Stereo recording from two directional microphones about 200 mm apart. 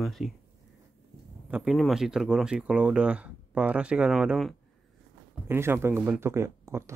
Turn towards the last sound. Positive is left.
turn(degrees=-15)  # may be behind; listen again after turning